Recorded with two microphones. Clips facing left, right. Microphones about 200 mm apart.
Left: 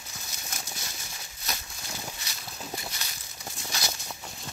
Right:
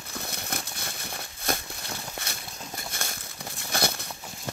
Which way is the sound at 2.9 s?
50° right (ahead or behind).